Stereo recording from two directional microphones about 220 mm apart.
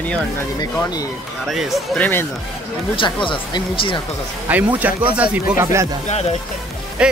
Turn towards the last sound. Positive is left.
turn(degrees=-5)  # may be behind; listen again after turning